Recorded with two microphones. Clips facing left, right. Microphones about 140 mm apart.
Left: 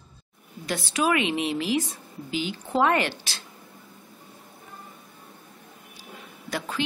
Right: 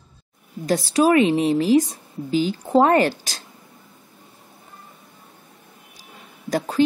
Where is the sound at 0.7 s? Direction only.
35° right (ahead or behind).